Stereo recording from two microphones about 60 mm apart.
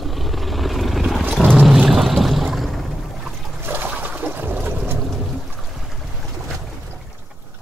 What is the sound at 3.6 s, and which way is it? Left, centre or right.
Water, right.